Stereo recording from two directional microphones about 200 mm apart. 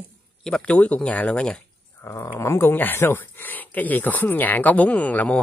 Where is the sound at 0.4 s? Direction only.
5° left (ahead or behind).